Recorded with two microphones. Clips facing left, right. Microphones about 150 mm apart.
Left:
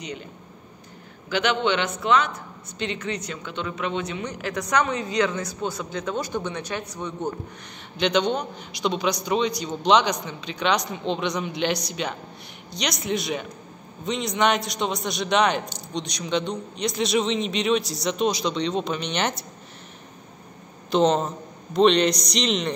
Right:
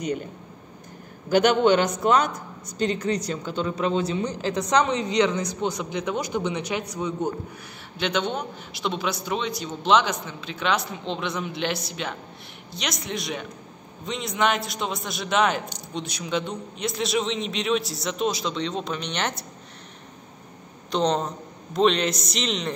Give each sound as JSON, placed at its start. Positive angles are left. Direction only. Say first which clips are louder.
{"t": 0.0, "sound": "speech", "louder": "right 7 dB", "side_deg": -50}
{"t": 1.3, "sound": "a man's voice", "louder": "right 5 dB", "side_deg": -45}
{"t": 20.9, "sound": "a man's voice", "louder": "left 3 dB", "side_deg": 0}